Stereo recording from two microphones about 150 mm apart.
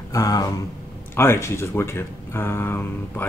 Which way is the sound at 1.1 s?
15° left (ahead or behind).